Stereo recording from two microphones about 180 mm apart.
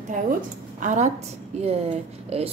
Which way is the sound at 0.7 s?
45° right (ahead or behind).